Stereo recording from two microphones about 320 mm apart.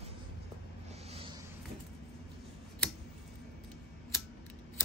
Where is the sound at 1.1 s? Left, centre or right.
Centre.